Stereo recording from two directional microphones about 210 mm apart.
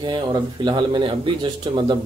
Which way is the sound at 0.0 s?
20° right (ahead or behind).